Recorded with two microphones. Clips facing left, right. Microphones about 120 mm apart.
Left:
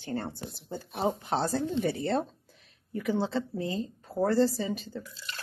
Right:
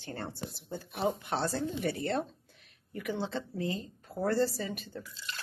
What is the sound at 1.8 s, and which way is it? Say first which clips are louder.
Speech: left 4 dB; 30° left (ahead or behind).